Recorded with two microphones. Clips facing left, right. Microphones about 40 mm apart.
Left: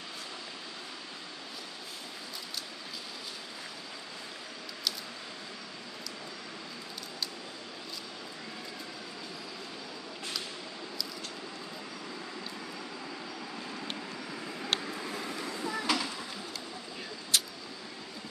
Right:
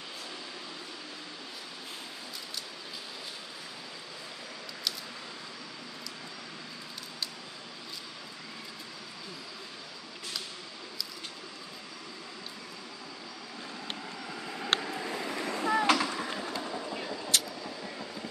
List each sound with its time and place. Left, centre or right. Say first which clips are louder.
14.8 s vehicle: right 2 dB; centre
15.4 s a sound: right 7 dB; right
16.6 s train: right 6 dB; right
17.3 s vehicle: even; centre